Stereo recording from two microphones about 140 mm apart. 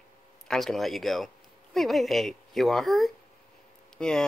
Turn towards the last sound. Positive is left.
turn(degrees=5)  # may be behind; listen again after turning